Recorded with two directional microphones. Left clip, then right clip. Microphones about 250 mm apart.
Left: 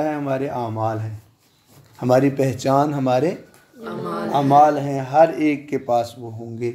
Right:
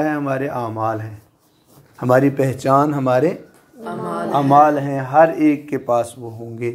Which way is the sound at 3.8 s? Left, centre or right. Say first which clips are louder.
Right 3 dB; centre.